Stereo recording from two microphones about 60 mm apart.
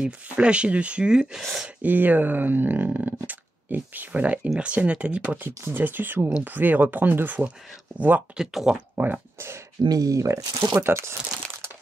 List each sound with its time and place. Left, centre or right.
0.0 s speech: centre
1.8 s speech: right
5.6 s speech: right
8.4 s speech: centre
8.9 s speech: right
9.8 s speech: right